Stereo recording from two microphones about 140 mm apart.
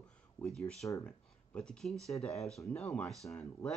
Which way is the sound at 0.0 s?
5° left (ahead or behind).